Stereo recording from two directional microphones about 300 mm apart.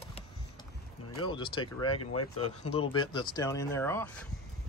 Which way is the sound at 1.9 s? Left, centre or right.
Left.